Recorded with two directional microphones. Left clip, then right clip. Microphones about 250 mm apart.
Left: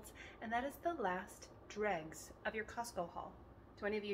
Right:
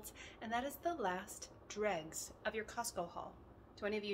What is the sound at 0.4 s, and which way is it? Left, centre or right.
A woman's voice, centre.